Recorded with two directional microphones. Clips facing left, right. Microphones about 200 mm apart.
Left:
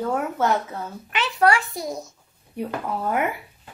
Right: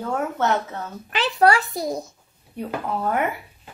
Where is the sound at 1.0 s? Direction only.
35° right (ahead or behind).